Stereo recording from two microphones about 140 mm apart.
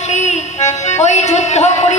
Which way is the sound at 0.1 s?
55° left (ahead or behind).